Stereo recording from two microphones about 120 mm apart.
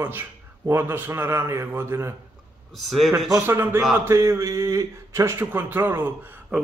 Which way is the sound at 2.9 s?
Centre (ahead or behind).